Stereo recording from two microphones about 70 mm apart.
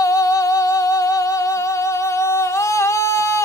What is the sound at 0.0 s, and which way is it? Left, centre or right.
Music, left.